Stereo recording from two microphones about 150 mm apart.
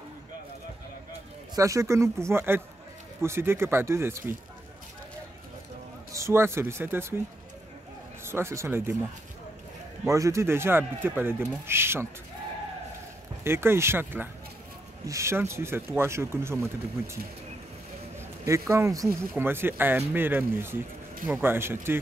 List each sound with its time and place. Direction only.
1.5 s speech: 20° right (ahead or behind)
6.1 s speech: 15° right (ahead or behind)
8.2 s speech: 15° right (ahead or behind)
10.0 s speech: 20° right (ahead or behind)
13.4 s speech: 15° right (ahead or behind)
18.4 s speech: 20° right (ahead or behind)